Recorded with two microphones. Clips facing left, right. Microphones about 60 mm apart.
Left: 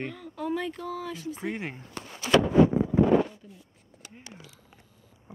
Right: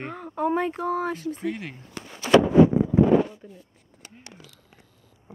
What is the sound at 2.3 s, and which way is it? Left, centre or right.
Speech, right.